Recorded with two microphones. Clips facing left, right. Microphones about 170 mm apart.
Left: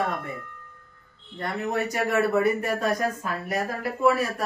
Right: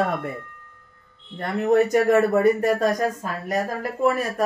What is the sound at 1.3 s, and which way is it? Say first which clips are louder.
Speech: right 8 dB; 50° right (ahead or behind).